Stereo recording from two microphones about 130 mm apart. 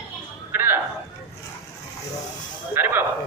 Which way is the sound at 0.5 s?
15° right (ahead or behind).